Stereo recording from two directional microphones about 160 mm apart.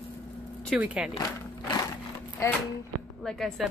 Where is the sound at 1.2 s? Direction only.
25° left (ahead or behind).